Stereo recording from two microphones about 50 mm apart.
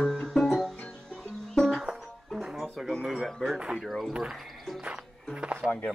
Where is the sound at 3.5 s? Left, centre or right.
Centre.